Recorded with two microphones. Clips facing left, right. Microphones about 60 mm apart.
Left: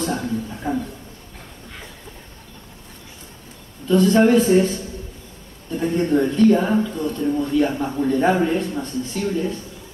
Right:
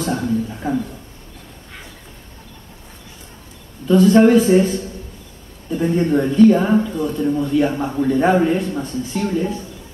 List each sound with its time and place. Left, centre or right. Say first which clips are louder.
0.0 s a man's voice: right 3 dB; centre
3.8 s a man's voice: right 4 dB; centre